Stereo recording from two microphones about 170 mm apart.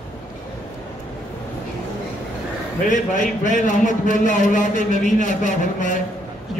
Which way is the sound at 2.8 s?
50° left (ahead or behind).